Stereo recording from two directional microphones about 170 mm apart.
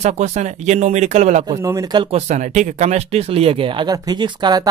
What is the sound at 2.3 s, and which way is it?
Speech, 45° right (ahead or behind).